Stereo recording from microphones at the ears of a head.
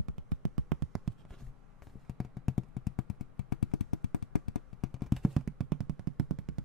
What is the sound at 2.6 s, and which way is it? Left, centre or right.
Vehicle, left.